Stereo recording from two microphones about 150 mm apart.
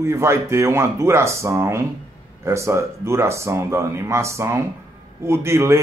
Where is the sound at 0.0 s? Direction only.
20° right (ahead or behind).